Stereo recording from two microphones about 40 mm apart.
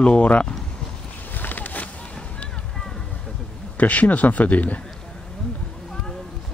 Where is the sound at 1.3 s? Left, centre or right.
Left.